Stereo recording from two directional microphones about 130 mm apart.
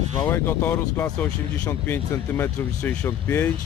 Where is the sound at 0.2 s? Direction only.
15° left (ahead or behind).